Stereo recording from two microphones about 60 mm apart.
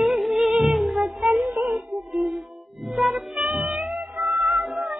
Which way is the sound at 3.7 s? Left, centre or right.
Centre.